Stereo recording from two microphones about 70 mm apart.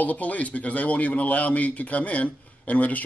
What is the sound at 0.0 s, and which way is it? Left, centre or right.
A man's voice, left.